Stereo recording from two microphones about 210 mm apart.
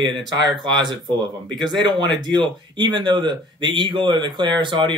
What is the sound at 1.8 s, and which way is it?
Speech, 20° right (ahead or behind).